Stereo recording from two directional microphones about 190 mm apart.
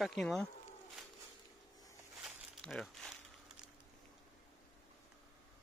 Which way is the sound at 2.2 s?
Centre (ahead or behind).